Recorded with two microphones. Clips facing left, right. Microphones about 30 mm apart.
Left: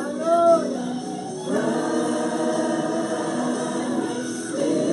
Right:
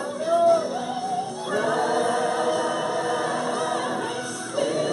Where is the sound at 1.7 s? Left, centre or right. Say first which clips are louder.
Right 3 dB; right.